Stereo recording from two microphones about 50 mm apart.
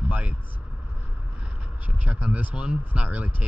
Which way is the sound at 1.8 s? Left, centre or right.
Right.